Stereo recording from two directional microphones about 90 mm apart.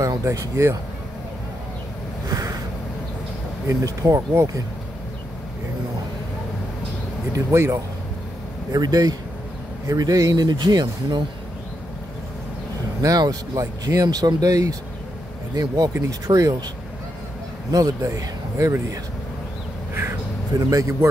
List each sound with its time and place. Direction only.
0.2 s speech: 35° right (ahead or behind)
2.2 s a sound: 45° right (ahead or behind)
3.6 s speech: 40° right (ahead or behind)
7.3 s speech: 30° right (ahead or behind)
8.7 s speech: 45° right (ahead or behind)
13.0 s speech: 45° right (ahead or behind)
17.6 s speech: 40° right (ahead or behind)
19.9 s a sound: 25° right (ahead or behind)
20.5 s speech: 40° right (ahead or behind)